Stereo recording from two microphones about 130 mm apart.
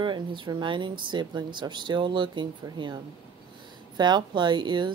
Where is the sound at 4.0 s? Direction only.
35° right (ahead or behind).